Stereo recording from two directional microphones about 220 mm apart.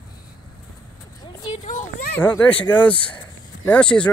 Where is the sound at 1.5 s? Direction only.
35° left (ahead or behind).